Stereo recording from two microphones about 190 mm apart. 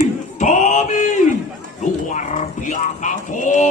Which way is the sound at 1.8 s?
40° left (ahead or behind).